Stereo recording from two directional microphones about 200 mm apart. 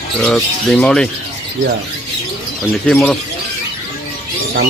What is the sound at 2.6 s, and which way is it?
Speech, 5° left (ahead or behind).